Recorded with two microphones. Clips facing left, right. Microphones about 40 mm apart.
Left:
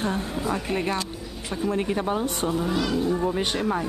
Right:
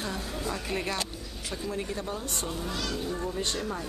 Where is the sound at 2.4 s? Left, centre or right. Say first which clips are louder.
Left 9 dB; centre.